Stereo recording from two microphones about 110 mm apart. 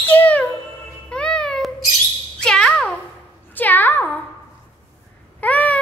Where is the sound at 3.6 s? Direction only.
15° left (ahead or behind).